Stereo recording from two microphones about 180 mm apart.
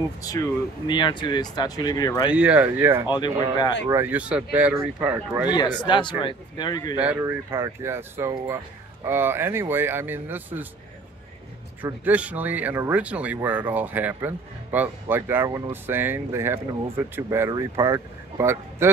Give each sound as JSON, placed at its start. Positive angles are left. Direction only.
{"t": 0.8, "sound": "speech", "side_deg": 25}
{"t": 2.3, "sound": "speech", "side_deg": -5}
{"t": 3.1, "sound": "speech", "side_deg": 25}
{"t": 3.9, "sound": "speech", "side_deg": -10}
{"t": 5.5, "sound": "speech", "side_deg": 25}
{"t": 7.0, "sound": "speech", "side_deg": -10}
{"t": 11.8, "sound": "speech", "side_deg": -10}